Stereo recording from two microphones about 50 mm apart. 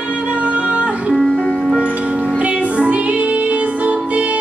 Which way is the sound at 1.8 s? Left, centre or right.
Right.